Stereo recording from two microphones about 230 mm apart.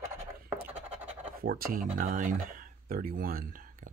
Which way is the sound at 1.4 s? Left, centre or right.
Right.